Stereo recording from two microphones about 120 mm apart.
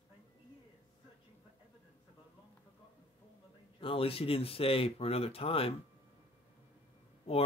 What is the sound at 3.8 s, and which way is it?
Speech, 50° left (ahead or behind).